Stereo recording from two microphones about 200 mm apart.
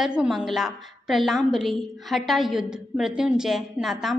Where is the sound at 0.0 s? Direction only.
5° right (ahead or behind).